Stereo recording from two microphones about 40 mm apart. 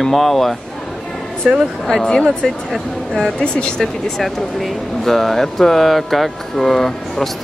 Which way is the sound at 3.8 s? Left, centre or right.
Centre.